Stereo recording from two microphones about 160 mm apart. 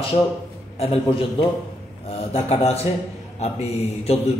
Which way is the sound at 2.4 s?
40° left (ahead or behind).